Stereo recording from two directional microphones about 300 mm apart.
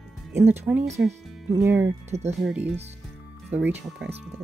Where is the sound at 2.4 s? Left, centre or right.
Centre.